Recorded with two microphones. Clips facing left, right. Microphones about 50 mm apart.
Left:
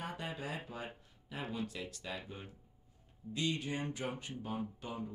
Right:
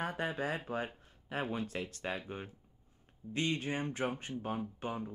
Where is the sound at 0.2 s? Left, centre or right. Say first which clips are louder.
Right 6 dB; right.